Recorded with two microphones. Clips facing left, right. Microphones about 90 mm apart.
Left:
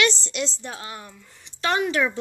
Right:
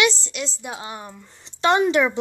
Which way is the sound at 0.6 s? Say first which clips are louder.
Right 3 dB; 15° right (ahead or behind).